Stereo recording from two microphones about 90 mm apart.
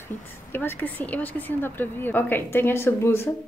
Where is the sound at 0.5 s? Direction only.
25° left (ahead or behind).